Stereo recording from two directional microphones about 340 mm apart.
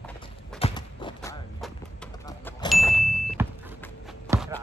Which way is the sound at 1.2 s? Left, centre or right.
Centre.